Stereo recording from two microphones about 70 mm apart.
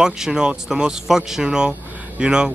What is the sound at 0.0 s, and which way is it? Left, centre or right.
Speech, centre.